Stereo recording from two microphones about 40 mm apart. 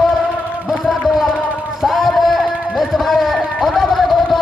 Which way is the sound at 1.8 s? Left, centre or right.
Centre.